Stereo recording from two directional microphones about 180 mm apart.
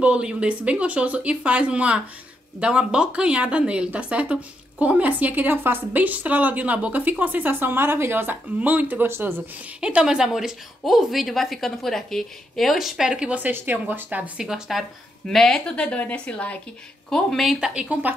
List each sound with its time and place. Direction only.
0.0 s a woman's voice: 5° right (ahead or behind)